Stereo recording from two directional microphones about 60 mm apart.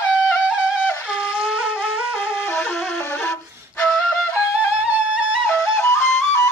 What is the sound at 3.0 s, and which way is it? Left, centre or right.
Flute, left.